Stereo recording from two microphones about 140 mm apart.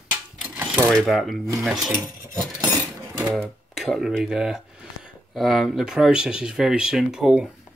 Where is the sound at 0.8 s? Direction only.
Centre (ahead or behind).